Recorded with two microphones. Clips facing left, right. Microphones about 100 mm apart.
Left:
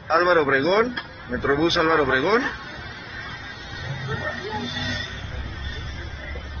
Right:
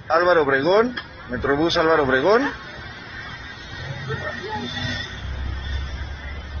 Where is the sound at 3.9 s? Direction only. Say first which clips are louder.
Right 1 dB; 15° left (ahead or behind).